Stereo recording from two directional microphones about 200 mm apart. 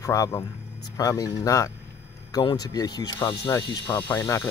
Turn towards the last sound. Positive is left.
turn(degrees=15)  # may be behind; listen again after turning